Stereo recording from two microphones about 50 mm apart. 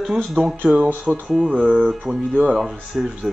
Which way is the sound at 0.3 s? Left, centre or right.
Centre.